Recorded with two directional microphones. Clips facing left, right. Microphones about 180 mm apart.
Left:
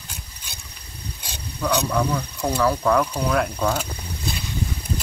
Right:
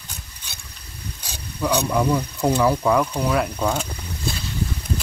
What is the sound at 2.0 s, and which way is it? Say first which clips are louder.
Speech: right 3 dB; 25° right (ahead or behind).